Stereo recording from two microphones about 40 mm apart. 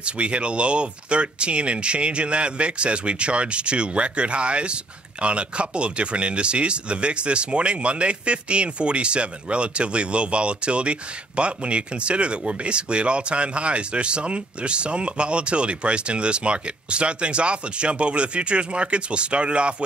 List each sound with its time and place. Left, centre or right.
0.0 s speech: right